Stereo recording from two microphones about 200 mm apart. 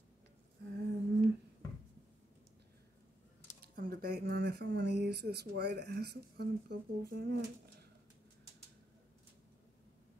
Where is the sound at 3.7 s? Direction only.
45° right (ahead or behind).